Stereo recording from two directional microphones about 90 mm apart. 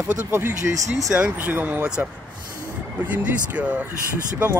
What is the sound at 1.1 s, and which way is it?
Speech, 15° right (ahead or behind).